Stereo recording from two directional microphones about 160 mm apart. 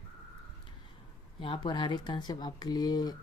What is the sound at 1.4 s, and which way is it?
Speech, 30° left (ahead or behind).